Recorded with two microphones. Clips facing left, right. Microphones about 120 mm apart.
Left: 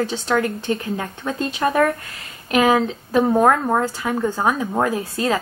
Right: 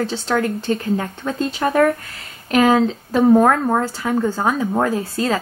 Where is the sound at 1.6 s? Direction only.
Centre (ahead or behind).